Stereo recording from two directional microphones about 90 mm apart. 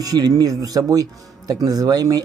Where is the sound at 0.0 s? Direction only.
45° right (ahead or behind).